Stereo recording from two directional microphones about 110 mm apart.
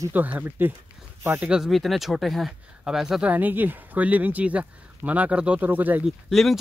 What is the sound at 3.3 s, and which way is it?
Speech, 15° right (ahead or behind).